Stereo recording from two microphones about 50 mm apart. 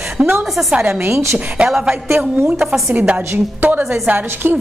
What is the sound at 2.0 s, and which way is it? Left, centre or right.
Speech, right.